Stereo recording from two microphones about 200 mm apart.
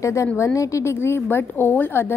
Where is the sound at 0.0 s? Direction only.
15° left (ahead or behind).